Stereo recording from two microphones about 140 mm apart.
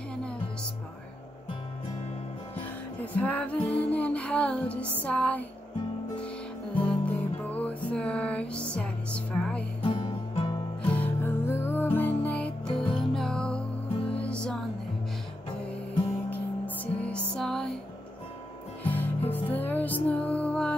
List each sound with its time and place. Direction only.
3.2 s music: 10° left (ahead or behind)
6.8 s music: 10° left (ahead or behind)
9.8 s music: 40° left (ahead or behind)
10.8 s music: 10° left (ahead or behind)
16.3 s music: 10° left (ahead or behind)
18.9 s music: 15° left (ahead or behind)